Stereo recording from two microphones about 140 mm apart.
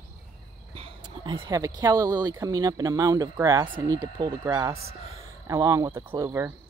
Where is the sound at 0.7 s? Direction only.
40° right (ahead or behind).